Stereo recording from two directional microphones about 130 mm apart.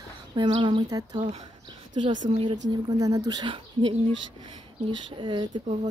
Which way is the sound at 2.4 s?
30° right (ahead or behind).